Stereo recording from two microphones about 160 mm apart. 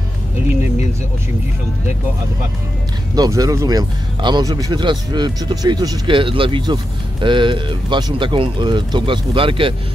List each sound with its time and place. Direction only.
3.2 s speech: 20° right (ahead or behind)